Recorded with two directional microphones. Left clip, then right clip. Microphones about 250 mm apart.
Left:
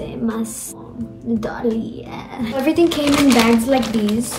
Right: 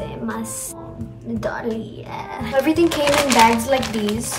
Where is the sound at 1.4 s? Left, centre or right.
Centre.